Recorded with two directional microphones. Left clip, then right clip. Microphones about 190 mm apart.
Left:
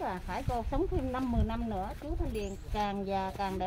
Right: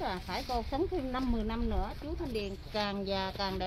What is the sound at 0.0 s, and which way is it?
Speech, 50° left (ahead or behind).